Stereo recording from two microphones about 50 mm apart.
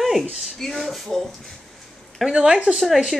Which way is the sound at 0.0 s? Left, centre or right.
Centre.